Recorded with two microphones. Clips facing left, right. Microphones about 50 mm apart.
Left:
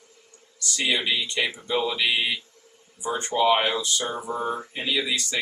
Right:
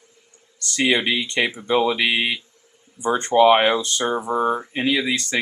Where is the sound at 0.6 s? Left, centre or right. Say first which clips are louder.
Right 6 dB; right.